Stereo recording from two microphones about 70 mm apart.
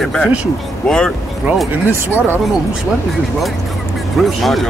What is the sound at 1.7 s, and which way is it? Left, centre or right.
Speech, right.